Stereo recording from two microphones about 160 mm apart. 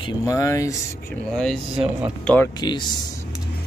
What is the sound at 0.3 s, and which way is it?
Speech, 20° left (ahead or behind).